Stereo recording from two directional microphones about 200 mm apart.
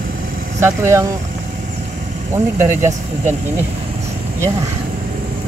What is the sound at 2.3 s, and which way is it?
Speech, 10° right (ahead or behind).